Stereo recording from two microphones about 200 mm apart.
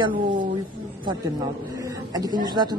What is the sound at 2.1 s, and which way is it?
Speech, 20° right (ahead or behind).